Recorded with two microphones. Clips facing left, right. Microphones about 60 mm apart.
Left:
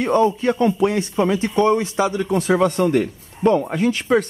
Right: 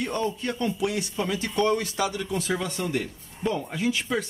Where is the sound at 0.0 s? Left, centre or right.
Left.